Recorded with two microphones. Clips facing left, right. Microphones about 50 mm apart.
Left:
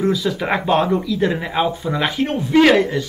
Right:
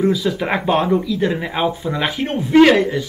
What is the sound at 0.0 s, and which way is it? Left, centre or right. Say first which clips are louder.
Speech: right 1 dB; centre.